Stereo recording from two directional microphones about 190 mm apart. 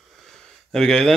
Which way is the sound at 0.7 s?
5° left (ahead or behind).